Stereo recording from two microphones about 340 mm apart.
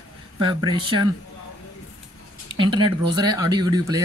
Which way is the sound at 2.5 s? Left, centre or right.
Centre.